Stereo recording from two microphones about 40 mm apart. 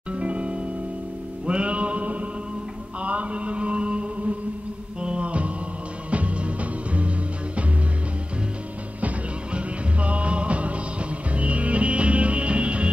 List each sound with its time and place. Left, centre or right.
0.1 s music: right
3.0 s mantra: right
5.0 s music: right
9.5 s music: right